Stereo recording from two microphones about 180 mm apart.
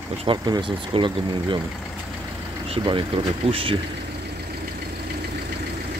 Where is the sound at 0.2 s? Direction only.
25° right (ahead or behind).